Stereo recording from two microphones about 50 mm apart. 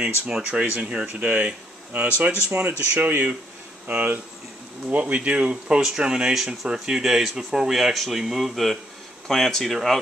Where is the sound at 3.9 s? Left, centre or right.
Right; by 10.0 s centre.